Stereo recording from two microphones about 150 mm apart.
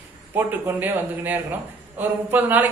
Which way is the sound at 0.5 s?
10° right (ahead or behind).